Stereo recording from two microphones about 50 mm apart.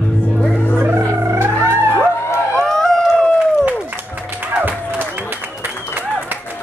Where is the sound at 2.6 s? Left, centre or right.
Centre.